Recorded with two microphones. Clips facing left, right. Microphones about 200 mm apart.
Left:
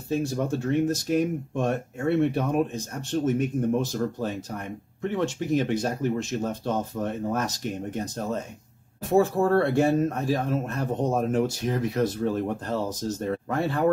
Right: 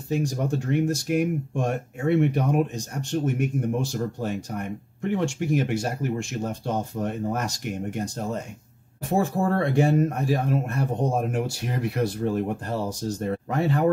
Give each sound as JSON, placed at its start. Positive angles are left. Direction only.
{"t": 0.1, "sound": "speech", "side_deg": -15}
{"t": 9.1, "sound": "speech", "side_deg": -15}